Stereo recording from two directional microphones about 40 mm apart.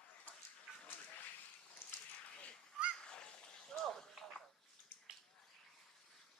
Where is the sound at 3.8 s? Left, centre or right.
Centre.